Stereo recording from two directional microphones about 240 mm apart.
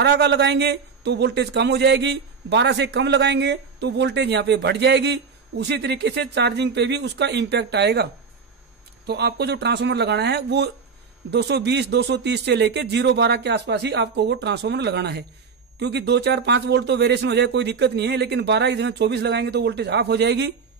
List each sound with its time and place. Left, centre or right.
0.0 s a man's voice: right